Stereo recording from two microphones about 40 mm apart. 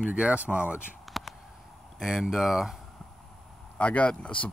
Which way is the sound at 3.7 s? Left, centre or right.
Left.